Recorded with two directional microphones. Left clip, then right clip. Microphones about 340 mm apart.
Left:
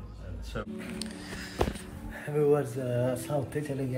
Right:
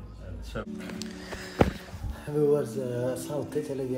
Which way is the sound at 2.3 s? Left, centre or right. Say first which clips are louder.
Right 1 dB; centre.